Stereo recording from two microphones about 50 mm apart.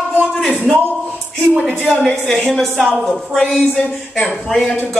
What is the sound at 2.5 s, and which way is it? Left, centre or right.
A woman's voice, centre.